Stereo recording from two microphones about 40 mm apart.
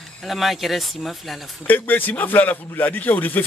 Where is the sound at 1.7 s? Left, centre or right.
Left.